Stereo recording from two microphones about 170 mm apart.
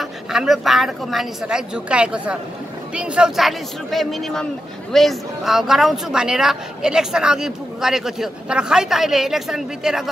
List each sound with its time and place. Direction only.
0.0 s speech: centre (ahead or behind)